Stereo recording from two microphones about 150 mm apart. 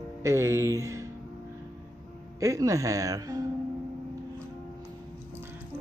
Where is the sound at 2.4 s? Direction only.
20° right (ahead or behind).